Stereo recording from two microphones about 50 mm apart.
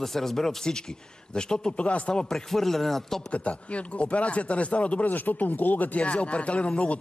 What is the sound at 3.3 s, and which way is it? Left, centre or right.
Speech, left.